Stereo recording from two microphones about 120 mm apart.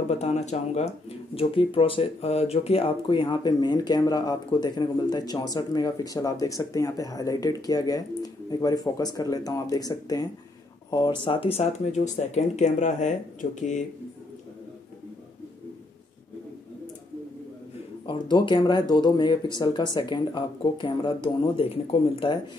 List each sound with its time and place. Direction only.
0.1 s speech: 65° left (ahead or behind); by 13.8 s 90° left
18.0 s speech: 45° left (ahead or behind)